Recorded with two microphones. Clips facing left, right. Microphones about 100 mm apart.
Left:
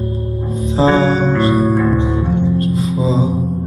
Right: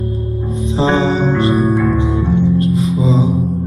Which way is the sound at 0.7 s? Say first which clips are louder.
Left 2 dB; 40° left (ahead or behind).